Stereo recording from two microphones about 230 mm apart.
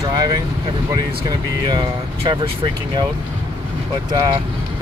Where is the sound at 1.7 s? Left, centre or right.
Centre.